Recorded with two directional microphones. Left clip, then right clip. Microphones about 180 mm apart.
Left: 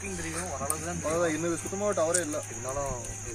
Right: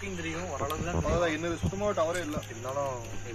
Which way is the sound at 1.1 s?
50° left (ahead or behind).